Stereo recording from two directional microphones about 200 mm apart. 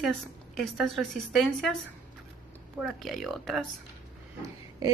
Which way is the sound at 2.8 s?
Centre (ahead or behind).